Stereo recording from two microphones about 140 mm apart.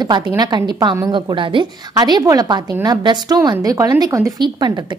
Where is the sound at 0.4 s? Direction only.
30° right (ahead or behind).